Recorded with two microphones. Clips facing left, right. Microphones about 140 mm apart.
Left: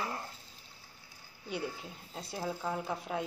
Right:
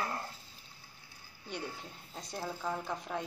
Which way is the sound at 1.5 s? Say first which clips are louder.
Left 3 dB; 5° left (ahead or behind).